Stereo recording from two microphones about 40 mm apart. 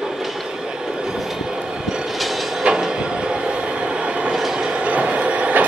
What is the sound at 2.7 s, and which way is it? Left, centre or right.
Train, centre.